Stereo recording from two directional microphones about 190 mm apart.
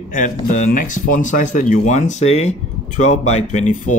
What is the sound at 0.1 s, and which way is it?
Speech, 40° left (ahead or behind).